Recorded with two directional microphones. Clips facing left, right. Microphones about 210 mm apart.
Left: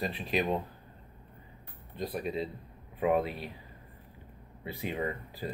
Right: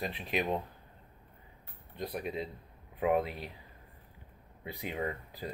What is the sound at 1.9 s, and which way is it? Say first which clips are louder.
Speech: left 3 dB; 15° right (ahead or behind).